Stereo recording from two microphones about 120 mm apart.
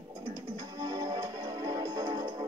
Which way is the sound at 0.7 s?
35° right (ahead or behind).